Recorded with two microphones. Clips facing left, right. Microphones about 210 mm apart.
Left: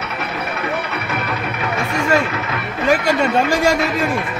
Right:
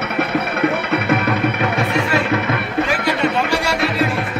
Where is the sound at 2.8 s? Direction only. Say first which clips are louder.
Left 6 dB; 45° left (ahead or behind).